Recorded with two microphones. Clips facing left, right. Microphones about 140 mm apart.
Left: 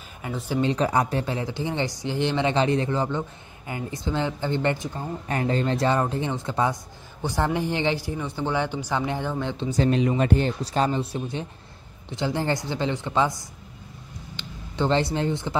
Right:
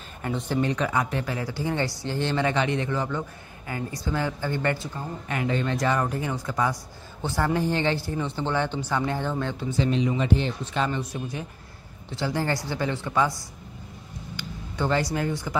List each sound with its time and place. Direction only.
0.2 s speech: 5° left (ahead or behind)
0.6 s speech: 30° left (ahead or behind)
2.5 s speech: 30° left (ahead or behind)
5.3 s speech: 35° left (ahead or behind); by 9.8 s 15° left (ahead or behind)
9.8 s speech: 50° left (ahead or behind); by 13.4 s 20° left (ahead or behind)
14.3 s a sound: 25° left (ahead or behind)
15.1 s speech: 25° left (ahead or behind)